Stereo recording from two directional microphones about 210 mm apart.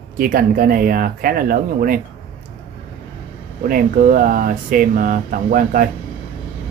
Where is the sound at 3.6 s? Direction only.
40° right (ahead or behind).